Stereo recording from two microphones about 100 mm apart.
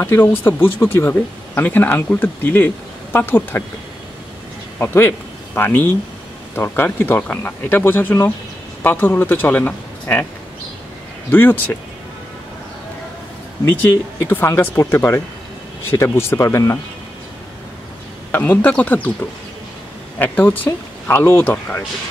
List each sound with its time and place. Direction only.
0.0 s speech: 20° left (ahead or behind)
4.7 s speech: 25° left (ahead or behind)
11.3 s speech: 20° left (ahead or behind)
13.7 s speech: 20° left (ahead or behind)
18.3 s speech: 15° left (ahead or behind)
20.2 s speech: 15° left (ahead or behind)